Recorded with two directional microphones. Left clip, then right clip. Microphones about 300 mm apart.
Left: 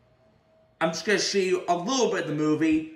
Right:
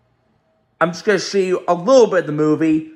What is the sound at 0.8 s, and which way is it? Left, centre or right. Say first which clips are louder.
A man's voice: right 8 dB; centre.